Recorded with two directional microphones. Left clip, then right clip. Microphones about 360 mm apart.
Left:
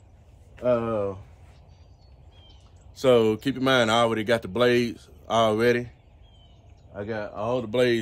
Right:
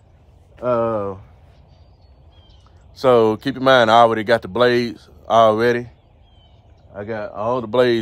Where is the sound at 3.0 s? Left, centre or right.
Centre.